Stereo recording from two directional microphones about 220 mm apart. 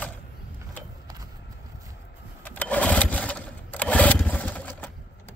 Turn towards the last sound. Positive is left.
turn(degrees=10)  # may be behind; listen again after turning